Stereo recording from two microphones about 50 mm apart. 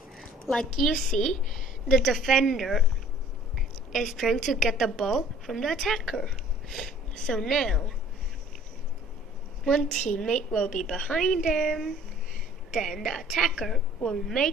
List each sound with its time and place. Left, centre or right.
0.2 s a sound: centre
0.7 s a woman's voice: centre
9.7 s a woman's voice: centre